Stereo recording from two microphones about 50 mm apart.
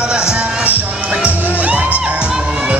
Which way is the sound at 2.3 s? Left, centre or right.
Centre.